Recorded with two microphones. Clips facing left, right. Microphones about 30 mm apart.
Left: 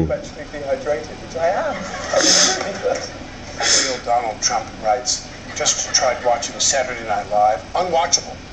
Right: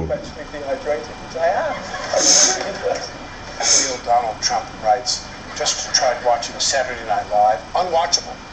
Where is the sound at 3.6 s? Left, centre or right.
Left.